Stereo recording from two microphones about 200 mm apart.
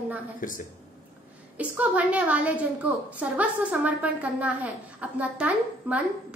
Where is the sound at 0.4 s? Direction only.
40° left (ahead or behind).